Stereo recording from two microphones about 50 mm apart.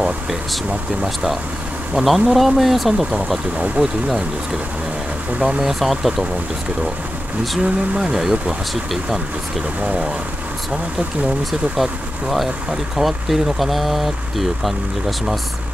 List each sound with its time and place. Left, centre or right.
0.0 s speech: centre
5.6 s speech: centre
7.9 s speech: centre
8.2 s speech: centre
11.7 s speech: centre